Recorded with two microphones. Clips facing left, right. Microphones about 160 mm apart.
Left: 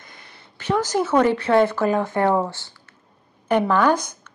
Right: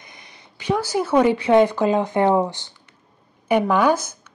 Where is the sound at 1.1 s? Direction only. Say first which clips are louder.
Right 2 dB; 15° right (ahead or behind).